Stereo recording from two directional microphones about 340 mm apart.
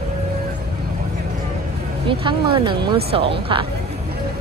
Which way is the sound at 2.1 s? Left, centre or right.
Centre.